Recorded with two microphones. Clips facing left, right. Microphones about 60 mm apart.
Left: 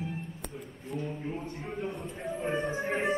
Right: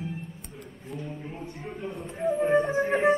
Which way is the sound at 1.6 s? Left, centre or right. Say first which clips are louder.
Right 2 dB; centre.